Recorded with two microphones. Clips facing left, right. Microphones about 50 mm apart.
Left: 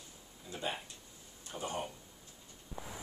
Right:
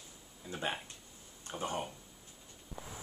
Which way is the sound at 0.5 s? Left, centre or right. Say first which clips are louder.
Right 2 dB; right.